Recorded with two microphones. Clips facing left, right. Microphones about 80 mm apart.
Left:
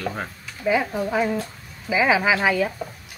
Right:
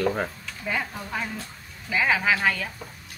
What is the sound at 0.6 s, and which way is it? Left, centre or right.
Speech, centre.